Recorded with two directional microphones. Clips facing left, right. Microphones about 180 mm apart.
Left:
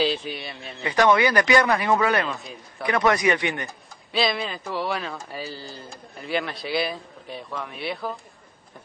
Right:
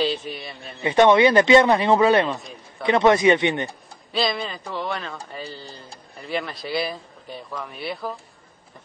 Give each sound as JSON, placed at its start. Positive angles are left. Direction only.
{"t": 0.0, "sound": "speech", "side_deg": 0}
{"t": 0.8, "sound": "speech", "side_deg": -25}
{"t": 4.1, "sound": "speech", "side_deg": 0}